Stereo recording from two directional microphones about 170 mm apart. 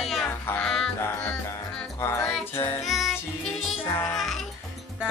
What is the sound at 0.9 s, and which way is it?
Music, 15° left (ahead or behind).